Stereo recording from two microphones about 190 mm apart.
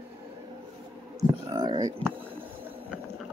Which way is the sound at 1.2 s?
20° right (ahead or behind).